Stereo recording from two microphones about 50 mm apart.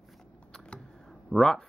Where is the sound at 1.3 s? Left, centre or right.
Centre.